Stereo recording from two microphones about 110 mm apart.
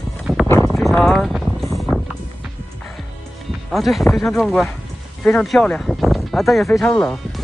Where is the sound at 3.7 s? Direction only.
Centre (ahead or behind).